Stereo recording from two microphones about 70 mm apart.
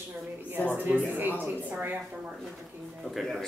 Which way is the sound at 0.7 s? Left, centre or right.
Right.